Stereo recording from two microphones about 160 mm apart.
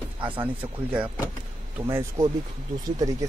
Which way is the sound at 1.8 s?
15° right (ahead or behind).